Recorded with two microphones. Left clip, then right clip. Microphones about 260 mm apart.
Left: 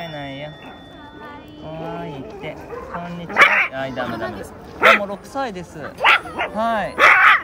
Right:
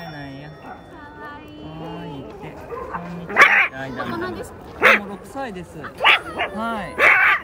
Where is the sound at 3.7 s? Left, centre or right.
Centre.